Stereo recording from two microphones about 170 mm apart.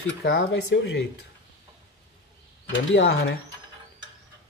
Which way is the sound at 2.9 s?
90° left.